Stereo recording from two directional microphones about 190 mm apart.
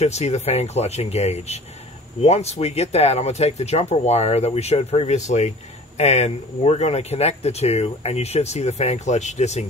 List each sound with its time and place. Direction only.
0.0 s speech: 35° left (ahead or behind)